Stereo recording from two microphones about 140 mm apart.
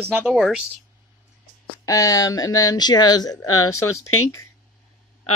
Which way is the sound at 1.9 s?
25° left (ahead or behind).